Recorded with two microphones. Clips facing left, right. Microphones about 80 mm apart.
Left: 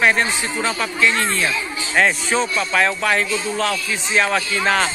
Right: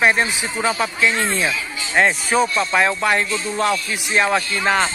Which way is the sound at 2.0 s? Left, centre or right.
Centre.